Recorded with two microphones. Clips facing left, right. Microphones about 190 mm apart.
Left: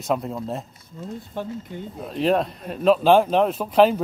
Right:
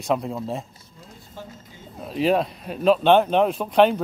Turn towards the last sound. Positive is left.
turn(degrees=5)  # may be behind; listen again after turning